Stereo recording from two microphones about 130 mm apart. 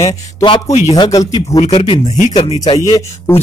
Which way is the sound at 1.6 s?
55° left (ahead or behind).